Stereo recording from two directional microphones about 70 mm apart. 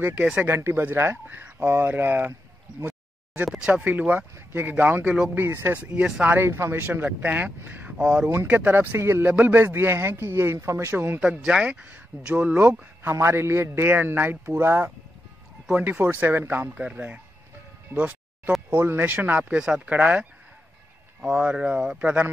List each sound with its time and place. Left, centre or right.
0.0 s speech: right
0.6 s speech: right
3.4 s speech: centre; by 9.3 s right
9.3 s speech: right
11.1 s speech: centre
13.0 s speech: right; by 17.2 s centre
17.9 s music: right
18.7 s speech: right